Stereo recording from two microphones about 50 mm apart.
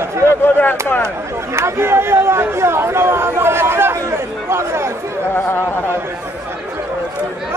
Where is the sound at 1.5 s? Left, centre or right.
Right.